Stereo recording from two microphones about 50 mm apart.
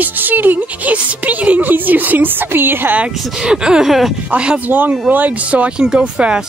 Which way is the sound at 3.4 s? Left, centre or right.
Centre.